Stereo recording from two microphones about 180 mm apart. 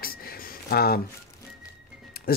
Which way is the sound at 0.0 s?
55° left (ahead or behind).